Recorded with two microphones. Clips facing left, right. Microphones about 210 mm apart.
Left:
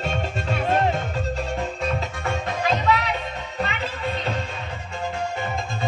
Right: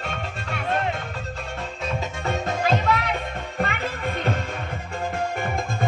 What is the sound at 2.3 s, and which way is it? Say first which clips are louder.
Music: right 1 dB; 45° right (ahead or behind).